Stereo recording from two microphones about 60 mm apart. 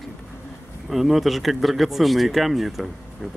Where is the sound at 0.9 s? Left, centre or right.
Centre.